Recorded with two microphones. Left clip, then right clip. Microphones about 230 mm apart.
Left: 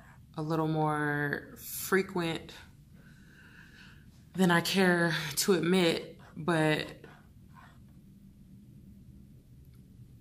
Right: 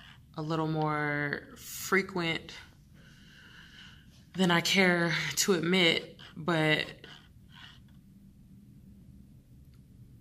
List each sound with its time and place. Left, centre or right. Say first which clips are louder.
0.0 s speech: left 1 dB; centre
4.3 s speech: right 1 dB; centre